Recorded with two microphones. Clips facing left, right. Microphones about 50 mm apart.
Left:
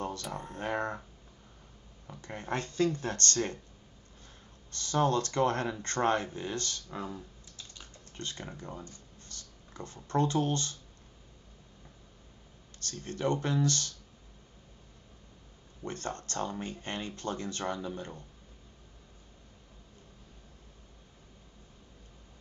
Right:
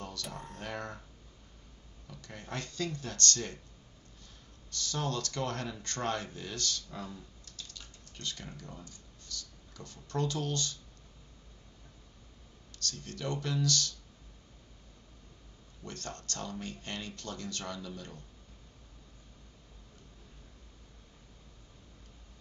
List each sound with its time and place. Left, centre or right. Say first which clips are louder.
0.0 s speech: left 5 dB; left
2.0 s speech: left 7 dB; left
4.6 s speech: left 7 dB; left
12.7 s speech: left 2 dB; left
15.8 s speech: left 6 dB; left